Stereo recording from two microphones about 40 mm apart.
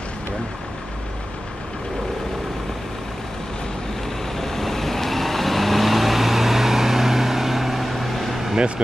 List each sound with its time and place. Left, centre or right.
4.4 s vehicle: centre
8.5 s speech: right